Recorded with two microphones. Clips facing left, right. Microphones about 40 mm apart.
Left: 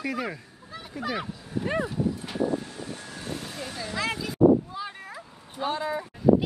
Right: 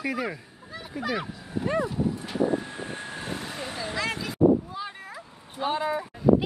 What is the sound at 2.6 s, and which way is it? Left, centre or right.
Vehicle, right.